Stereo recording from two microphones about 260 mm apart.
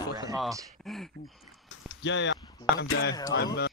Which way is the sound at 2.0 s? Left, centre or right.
Left.